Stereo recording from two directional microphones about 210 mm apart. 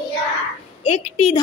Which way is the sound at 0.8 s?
30° left (ahead or behind).